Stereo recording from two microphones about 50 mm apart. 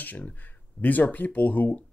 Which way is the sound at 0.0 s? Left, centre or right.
Left.